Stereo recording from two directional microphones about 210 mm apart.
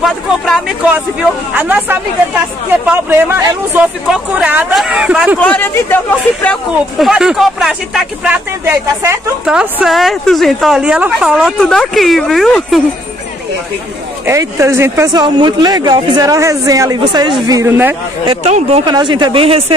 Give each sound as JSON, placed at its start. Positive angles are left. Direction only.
{"t": 0.0, "sound": "speech", "side_deg": 0}
{"t": 5.4, "sound": "speech", "side_deg": 10}
{"t": 14.2, "sound": "speech", "side_deg": -15}
{"t": 18.3, "sound": "speech", "side_deg": -30}